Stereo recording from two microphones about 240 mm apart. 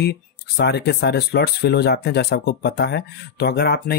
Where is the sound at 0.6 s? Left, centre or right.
Left.